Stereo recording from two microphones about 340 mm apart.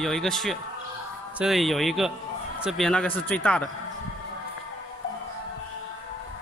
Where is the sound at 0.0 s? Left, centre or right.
Centre.